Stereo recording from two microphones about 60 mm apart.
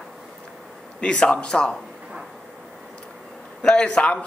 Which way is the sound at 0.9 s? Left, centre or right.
Centre.